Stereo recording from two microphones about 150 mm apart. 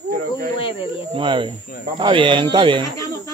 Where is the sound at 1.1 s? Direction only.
35° right (ahead or behind).